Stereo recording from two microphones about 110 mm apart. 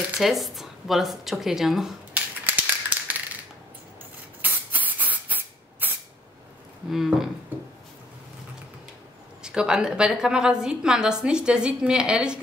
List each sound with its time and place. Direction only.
0.2 s speech: centre (ahead or behind)
2.1 s a sound: 15° right (ahead or behind)
4.4 s spray: 15° right (ahead or behind)
6.9 s speech: 5° right (ahead or behind)
9.4 s a woman's voice: 5° right (ahead or behind)